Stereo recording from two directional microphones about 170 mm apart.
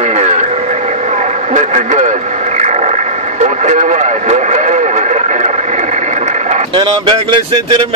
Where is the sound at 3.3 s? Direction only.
45° right (ahead or behind).